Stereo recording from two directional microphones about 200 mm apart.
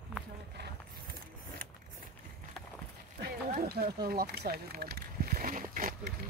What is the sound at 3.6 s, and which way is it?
Speech, 50° right (ahead or behind).